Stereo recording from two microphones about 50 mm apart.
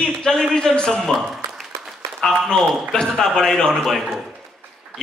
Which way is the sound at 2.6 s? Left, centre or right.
Centre.